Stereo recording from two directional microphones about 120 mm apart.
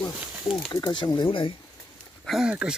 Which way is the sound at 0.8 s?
35° left (ahead or behind).